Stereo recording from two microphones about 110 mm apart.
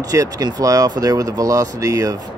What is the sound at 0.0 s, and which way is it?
Speech, 30° right (ahead or behind).